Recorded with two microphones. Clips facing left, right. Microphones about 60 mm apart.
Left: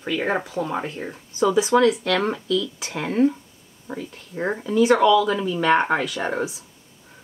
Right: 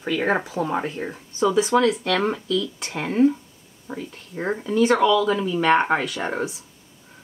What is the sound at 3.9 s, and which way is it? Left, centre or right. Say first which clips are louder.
Speech: left 1 dB; left.